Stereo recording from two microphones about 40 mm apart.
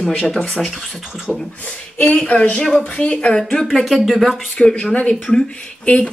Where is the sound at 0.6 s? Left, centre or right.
Centre.